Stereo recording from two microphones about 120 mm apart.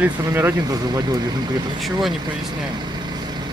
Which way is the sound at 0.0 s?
20° right (ahead or behind).